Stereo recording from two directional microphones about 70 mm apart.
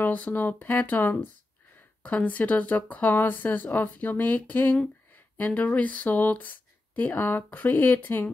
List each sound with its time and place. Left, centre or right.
0.0 s speech: left